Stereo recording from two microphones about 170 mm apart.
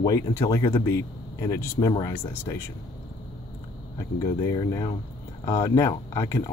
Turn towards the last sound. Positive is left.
turn(degrees=20)  # may be behind; listen again after turning